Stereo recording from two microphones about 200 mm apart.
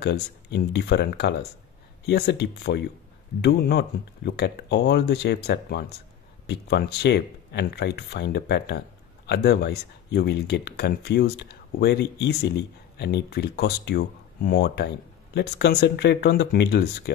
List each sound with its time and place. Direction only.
0.0 s speech: 55° left (ahead or behind)